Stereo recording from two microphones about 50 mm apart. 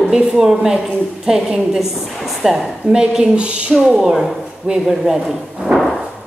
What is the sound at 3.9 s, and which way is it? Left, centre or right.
A woman's voice, centre.